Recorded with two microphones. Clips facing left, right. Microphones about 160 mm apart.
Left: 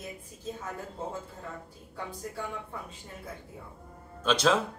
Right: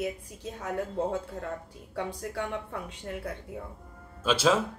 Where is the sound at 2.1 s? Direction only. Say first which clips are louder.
Right 1 dB; 70° right (ahead or behind).